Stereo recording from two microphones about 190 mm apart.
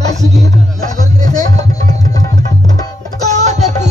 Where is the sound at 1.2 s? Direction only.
20° left (ahead or behind).